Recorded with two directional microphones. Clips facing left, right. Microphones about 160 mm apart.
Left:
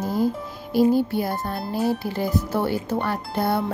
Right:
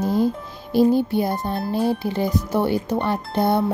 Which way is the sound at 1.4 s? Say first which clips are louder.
Right 2 dB; 25° right (ahead or behind).